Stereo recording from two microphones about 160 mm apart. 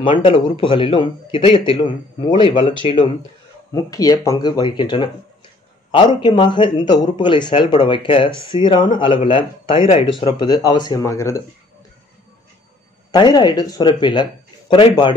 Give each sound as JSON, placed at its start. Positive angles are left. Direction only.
{"t": 0.2, "sound": "a man's voice", "side_deg": 35}
{"t": 3.7, "sound": "a man's voice", "side_deg": 25}
{"t": 13.1, "sound": "a man's voice", "side_deg": 25}